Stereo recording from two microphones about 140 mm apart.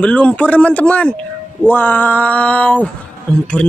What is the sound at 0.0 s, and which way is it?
Speech, 10° left (ahead or behind).